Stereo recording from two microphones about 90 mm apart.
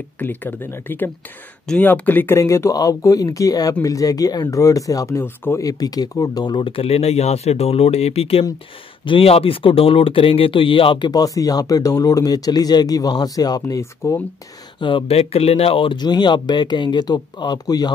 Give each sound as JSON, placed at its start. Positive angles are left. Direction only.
{"t": 0.2, "sound": "speech", "side_deg": 20}
{"t": 5.6, "sound": "speech", "side_deg": 45}
{"t": 11.1, "sound": "speech", "side_deg": 40}
{"t": 14.8, "sound": "speech", "side_deg": 70}
{"t": 15.6, "sound": "speech", "side_deg": 80}